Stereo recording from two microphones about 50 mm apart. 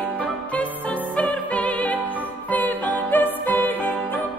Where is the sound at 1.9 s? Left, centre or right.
Right.